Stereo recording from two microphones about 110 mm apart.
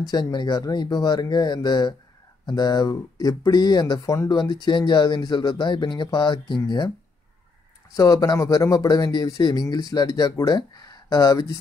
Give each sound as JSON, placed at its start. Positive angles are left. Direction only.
{"t": 0.0, "sound": "speech", "side_deg": 40}
{"t": 7.9, "sound": "speech", "side_deg": 30}